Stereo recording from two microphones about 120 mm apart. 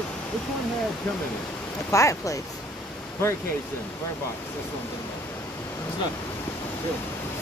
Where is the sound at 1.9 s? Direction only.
25° left (ahead or behind).